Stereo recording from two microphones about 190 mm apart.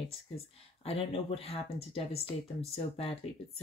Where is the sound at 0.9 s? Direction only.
30° left (ahead or behind).